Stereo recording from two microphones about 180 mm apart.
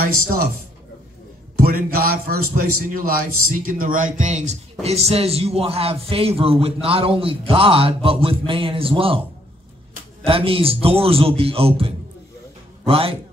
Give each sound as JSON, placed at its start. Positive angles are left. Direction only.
{"t": 1.6, "sound": "a man's voice", "side_deg": -55}
{"t": 10.2, "sound": "a man's voice", "side_deg": -30}